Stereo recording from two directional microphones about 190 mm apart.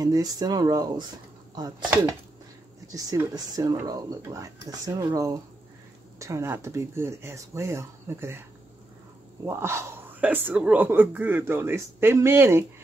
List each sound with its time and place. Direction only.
0.0 s speech: 20° right (ahead or behind)
9.5 s speech: 15° right (ahead or behind)